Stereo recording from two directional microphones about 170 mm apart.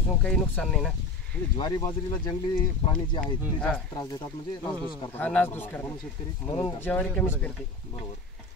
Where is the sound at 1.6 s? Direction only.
25° left (ahead or behind).